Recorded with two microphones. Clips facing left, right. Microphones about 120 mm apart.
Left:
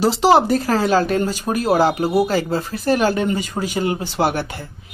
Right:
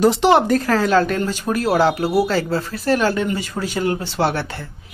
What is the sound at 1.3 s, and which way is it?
A man's voice, 15° left (ahead or behind).